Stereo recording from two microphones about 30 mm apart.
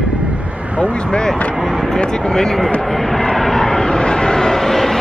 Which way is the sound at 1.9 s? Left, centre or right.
Left.